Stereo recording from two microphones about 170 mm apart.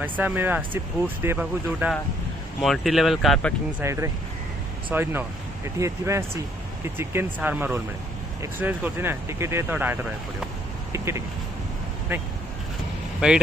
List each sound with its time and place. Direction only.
0.0 s speech: 10° right (ahead or behind)
3.8 s speech: 15° right (ahead or behind)